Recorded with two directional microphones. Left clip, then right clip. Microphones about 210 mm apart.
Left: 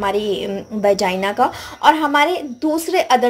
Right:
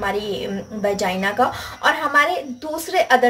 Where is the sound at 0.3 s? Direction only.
30° left (ahead or behind).